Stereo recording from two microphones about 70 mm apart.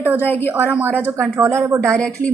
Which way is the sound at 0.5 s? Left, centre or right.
Right.